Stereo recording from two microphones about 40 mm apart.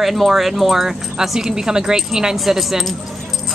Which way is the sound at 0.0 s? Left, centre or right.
Centre.